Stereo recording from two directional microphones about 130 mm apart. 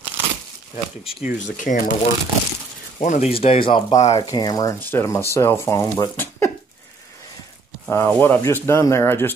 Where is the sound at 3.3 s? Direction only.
45° left (ahead or behind).